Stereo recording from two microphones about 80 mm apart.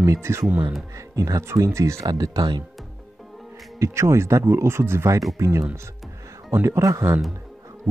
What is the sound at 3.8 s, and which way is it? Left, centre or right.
Speech, right.